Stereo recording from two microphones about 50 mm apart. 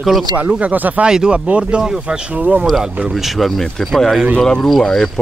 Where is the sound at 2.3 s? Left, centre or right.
Right.